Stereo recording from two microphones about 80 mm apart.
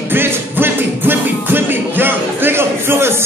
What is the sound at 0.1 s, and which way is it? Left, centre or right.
Music, right.